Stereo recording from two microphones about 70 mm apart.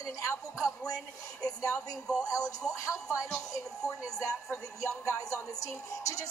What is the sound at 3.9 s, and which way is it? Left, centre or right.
Speech, right.